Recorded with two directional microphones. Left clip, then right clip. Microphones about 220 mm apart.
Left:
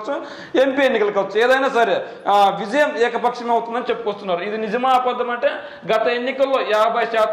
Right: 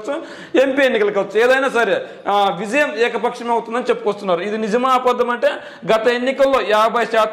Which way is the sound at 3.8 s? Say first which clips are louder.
Right 4 dB; 55° right (ahead or behind).